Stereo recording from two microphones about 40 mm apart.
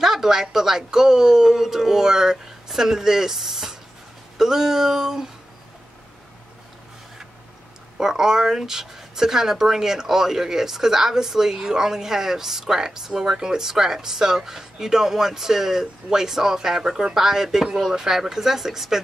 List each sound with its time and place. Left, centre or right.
0.0 s speech: centre
8.0 s speech: centre